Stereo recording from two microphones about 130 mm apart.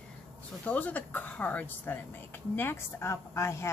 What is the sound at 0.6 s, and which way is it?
Speech, 10° left (ahead or behind).